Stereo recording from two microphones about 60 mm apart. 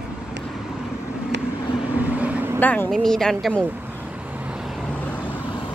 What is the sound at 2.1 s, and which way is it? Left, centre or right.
Vehicle, right.